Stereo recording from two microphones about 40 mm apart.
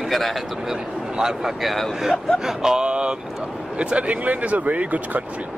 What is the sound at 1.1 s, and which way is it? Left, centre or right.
Speech, centre.